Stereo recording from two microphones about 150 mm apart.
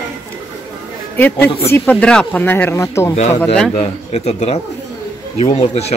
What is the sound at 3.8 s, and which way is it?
Speech, 45° left (ahead or behind).